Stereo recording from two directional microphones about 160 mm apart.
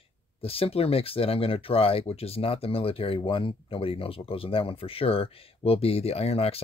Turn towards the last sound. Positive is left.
turn(degrees=40)  # may be behind; listen again after turning